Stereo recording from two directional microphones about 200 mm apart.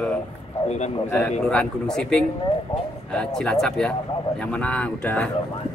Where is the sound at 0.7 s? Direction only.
35° left (ahead or behind).